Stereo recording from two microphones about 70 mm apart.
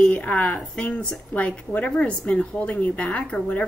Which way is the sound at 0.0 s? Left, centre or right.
Centre.